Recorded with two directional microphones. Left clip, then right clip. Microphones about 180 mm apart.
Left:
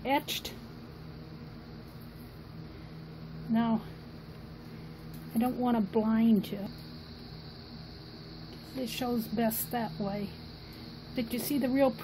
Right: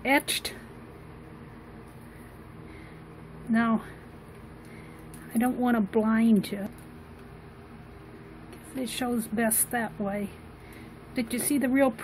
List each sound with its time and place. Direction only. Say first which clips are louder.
0.0 s speech: right 5 dB; 25° right (ahead or behind)
3.5 s speech: right 4 dB; 25° right (ahead or behind)
5.4 s speech: right 4 dB; 20° right (ahead or behind)
8.7 s speech: right 3 dB; 15° right (ahead or behind)